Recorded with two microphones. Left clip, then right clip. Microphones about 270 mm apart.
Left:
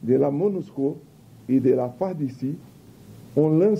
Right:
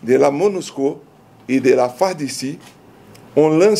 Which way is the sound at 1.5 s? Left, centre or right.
Centre.